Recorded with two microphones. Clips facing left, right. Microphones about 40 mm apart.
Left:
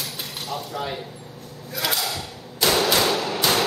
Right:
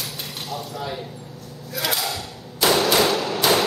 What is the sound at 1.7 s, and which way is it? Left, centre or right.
Clang, centre.